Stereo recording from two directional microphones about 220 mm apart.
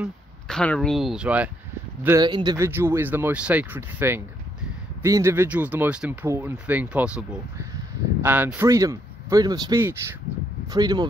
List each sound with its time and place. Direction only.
0.0 s speech: 5° left (ahead or behind)
2.0 s speech: 15° right (ahead or behind)